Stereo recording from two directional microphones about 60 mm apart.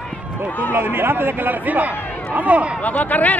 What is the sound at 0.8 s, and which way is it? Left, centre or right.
A man's voice, right.